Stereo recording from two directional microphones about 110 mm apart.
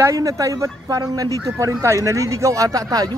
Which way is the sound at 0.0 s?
30° right (ahead or behind).